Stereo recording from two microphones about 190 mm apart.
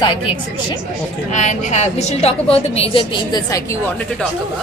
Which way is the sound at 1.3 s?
40° left (ahead or behind).